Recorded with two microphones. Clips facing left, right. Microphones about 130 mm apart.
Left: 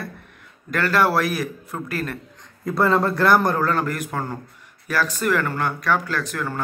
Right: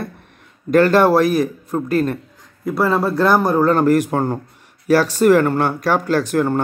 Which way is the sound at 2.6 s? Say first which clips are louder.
Right 2 dB; 5° right (ahead or behind).